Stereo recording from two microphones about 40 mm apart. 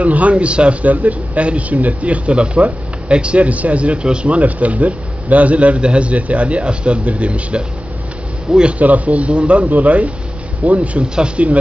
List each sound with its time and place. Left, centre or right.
0.0 s a man's voice: right
4.4 s a man's voice: right
8.7 s a man's voice: right